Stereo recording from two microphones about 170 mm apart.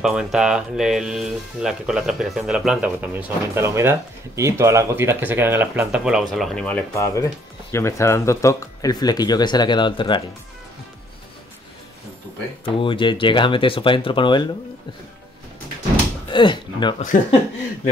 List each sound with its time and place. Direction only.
0.0 s speech: 5° right (ahead or behind); by 10.2 s 30° left (ahead or behind)
12.6 s speech: 30° left (ahead or behind)
16.3 s speech: 30° left (ahead or behind)